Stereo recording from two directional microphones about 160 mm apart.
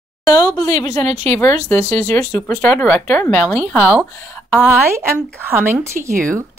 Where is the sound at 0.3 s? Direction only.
25° left (ahead or behind).